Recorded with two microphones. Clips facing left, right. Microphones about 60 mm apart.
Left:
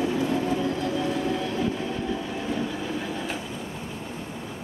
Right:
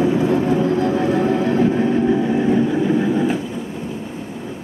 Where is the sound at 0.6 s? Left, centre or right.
Right.